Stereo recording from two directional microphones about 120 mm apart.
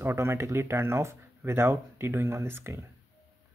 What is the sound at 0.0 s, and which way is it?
Speech, 20° right (ahead or behind).